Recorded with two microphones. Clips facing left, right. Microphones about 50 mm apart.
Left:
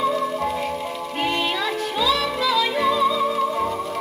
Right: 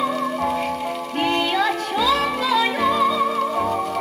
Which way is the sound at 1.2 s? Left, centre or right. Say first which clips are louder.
Right 3 dB; right.